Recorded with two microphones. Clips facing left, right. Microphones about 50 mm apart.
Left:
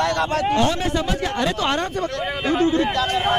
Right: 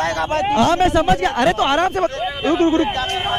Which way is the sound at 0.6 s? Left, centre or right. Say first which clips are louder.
Right 7 dB; right.